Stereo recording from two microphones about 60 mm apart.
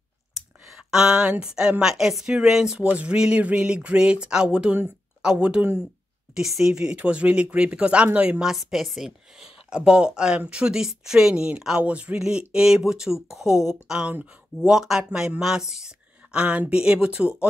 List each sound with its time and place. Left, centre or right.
0.7 s speech: centre
2.9 s speech: right
6.3 s speech: centre; by 8.4 s right
8.4 s speech: centre
15.7 s a sound: centre
16.7 s speech: centre